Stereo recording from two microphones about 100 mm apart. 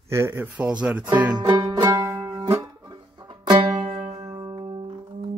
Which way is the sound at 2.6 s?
45° right (ahead or behind).